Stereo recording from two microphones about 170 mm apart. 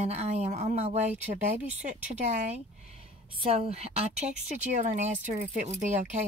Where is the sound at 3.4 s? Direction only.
35° right (ahead or behind).